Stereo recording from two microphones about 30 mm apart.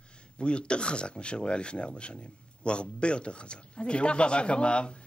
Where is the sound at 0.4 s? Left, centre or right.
Left.